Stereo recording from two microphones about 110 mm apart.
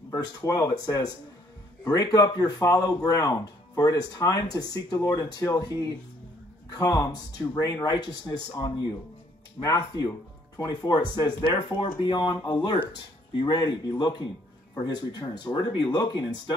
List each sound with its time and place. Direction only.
0.2 s speech: 35° left (ahead or behind)
2.1 s speech: 30° left (ahead or behind)